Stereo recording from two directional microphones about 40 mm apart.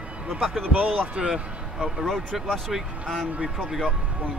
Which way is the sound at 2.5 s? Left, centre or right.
Centre.